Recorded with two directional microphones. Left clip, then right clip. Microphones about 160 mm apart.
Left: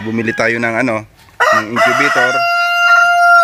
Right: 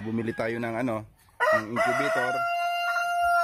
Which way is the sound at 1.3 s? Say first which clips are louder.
Left 12 dB; 70° left (ahead or behind).